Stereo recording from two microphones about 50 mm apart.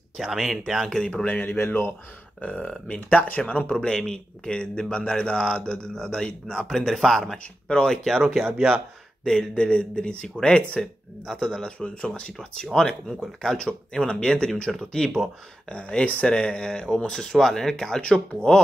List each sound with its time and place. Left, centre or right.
0.5 s speech: centre
0.8 s speech: centre
1.2 s speech: left
2.9 s speech: left
3.6 s speech: centre
7.6 s speech: centre
8.2 s speech: centre
9.2 s speech: centre
11.8 s speech: left
12.4 s speech: centre